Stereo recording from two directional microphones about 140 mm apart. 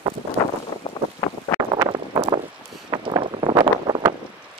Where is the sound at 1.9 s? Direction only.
35° right (ahead or behind).